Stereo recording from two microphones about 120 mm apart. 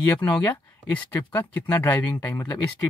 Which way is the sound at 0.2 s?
10° left (ahead or behind).